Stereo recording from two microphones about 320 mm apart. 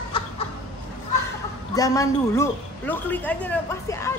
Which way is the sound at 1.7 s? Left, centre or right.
Centre.